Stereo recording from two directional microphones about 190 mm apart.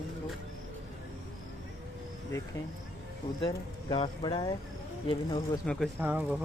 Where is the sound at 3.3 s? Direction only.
25° left (ahead or behind).